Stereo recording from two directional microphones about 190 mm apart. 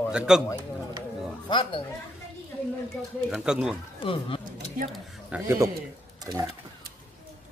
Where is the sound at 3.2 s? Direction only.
Centre (ahead or behind).